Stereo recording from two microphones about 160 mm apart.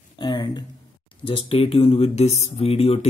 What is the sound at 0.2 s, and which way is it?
Speech, 25° left (ahead or behind).